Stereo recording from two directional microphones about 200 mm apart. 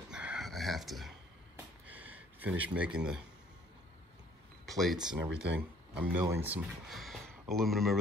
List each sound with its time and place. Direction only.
0.1 s a sound: 5° right (ahead or behind)
3.0 s speech: 5° right (ahead or behind)
4.6 s speech: centre (ahead or behind)